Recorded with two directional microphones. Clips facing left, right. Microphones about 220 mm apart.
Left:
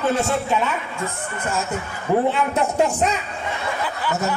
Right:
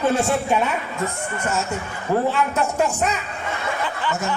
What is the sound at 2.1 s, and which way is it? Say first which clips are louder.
Speech: left 2 dB; 20° left (ahead or behind).